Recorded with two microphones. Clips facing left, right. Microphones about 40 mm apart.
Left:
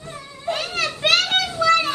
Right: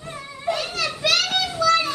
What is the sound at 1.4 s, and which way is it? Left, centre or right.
Children playing, left.